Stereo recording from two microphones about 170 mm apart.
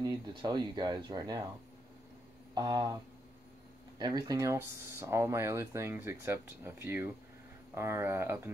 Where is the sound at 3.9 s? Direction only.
25° right (ahead or behind).